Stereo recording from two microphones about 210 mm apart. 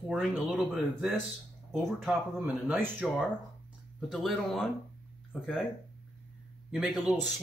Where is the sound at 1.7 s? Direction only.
Centre (ahead or behind).